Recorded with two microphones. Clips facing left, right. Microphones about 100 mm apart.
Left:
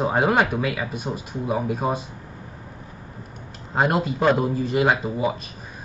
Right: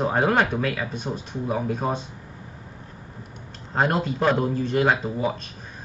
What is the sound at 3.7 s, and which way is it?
Speech, 10° left (ahead or behind).